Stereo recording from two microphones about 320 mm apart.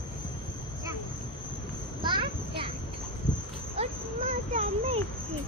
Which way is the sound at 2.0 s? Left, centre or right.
Centre.